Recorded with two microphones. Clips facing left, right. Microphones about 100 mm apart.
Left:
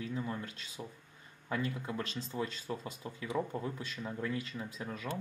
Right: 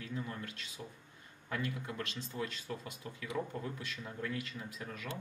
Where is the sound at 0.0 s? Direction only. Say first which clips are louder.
Left 4 dB; 20° left (ahead or behind).